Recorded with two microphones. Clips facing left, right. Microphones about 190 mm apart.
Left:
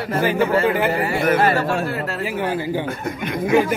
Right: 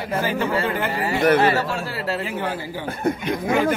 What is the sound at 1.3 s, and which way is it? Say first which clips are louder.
Speech: left 1 dB; 45° left (ahead or behind).